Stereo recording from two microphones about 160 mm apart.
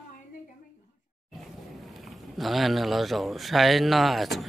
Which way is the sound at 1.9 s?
Centre (ahead or behind).